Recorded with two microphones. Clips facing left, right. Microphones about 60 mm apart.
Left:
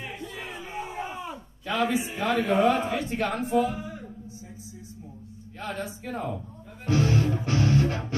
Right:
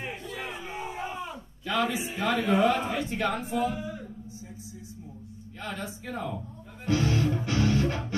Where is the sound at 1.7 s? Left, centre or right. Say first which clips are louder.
Left 2 dB; left.